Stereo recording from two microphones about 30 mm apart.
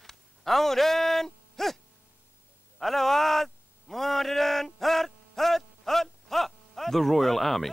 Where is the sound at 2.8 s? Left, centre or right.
Centre.